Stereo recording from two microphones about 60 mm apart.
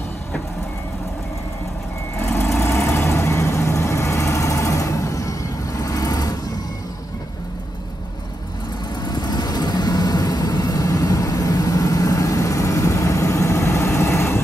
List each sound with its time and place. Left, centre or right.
2.1 s vehicle: left
9.1 s vehicle: left